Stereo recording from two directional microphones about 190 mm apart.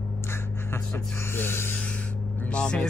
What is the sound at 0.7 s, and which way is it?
A man's voice, 15° left (ahead or behind).